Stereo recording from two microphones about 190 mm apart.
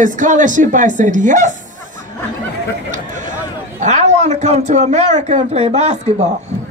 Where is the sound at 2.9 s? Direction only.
40° right (ahead or behind).